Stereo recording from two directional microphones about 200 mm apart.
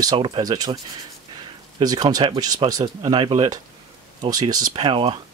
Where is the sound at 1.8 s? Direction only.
20° right (ahead or behind).